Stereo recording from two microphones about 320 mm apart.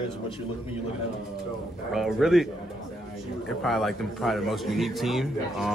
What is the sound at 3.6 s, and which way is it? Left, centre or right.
Speech, centre.